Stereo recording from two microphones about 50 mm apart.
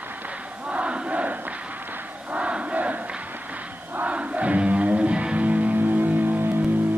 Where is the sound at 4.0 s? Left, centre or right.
Right.